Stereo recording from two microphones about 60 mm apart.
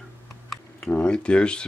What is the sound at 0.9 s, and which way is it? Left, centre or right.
Speech, centre.